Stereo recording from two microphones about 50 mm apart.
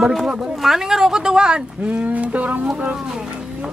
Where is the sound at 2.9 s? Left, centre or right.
Centre.